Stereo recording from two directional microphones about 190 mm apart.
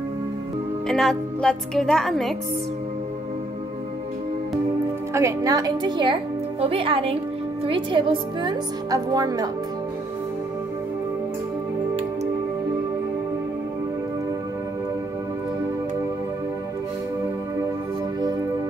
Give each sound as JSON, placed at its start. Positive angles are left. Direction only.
{"t": 0.8, "sound": "speech", "side_deg": 0}
{"t": 5.1, "sound": "a woman's voice", "side_deg": -15}